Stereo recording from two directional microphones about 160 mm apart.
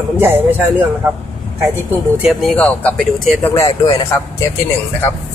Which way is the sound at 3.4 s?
20° left (ahead or behind).